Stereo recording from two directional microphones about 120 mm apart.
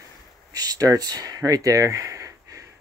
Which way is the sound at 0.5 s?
30° right (ahead or behind).